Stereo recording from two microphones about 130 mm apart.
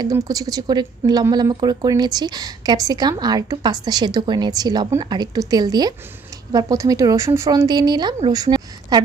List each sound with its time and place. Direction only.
0.0 s a woman's voice: 25° right (ahead or behind)